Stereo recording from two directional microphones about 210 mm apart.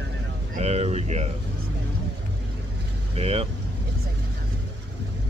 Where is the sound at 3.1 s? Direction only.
30° right (ahead or behind).